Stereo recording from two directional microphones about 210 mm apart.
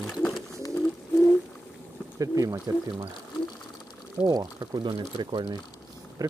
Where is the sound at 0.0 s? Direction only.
Centre (ahead or behind).